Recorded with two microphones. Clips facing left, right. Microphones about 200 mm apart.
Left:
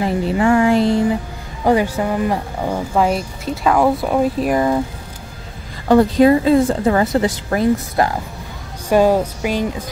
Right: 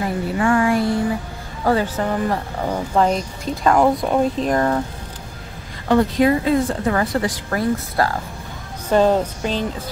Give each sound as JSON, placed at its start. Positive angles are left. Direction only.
{"t": 0.0, "sound": "a sound", "side_deg": 20}
{"t": 1.6, "sound": "speech", "side_deg": 15}
{"t": 5.9, "sound": "a woman's voice", "side_deg": 30}